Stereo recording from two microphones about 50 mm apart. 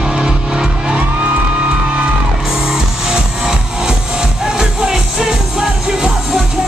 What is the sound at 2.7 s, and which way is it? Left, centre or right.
Music, centre.